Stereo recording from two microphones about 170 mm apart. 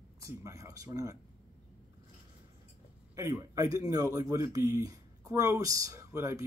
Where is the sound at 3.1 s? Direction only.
15° right (ahead or behind).